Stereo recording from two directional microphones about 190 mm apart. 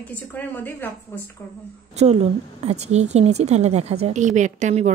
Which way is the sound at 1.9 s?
35° right (ahead or behind).